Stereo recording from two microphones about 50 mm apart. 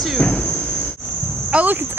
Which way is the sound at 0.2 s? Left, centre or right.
Left.